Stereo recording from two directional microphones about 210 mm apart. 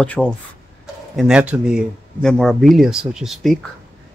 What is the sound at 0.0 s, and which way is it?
Speech, 5° left (ahead or behind).